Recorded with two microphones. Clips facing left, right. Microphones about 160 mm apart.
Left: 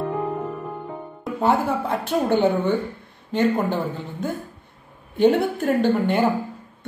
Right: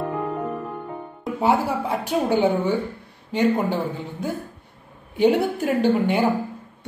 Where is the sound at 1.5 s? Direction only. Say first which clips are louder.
Even; 10° right (ahead or behind).